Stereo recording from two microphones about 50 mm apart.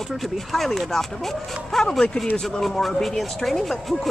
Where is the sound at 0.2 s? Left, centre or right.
Centre.